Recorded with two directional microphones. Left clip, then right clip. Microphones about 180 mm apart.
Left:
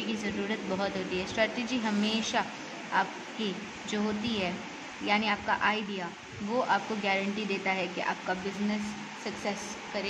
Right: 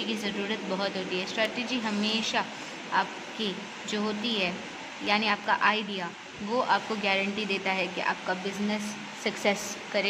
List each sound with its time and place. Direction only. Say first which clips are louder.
0.0 s speech: right 2 dB; 10° left (ahead or behind)
9.2 s speech: right 8 dB; 25° right (ahead or behind)